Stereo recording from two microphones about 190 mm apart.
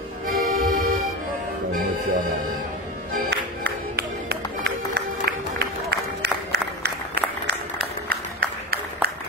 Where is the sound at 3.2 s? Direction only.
60° right (ahead or behind).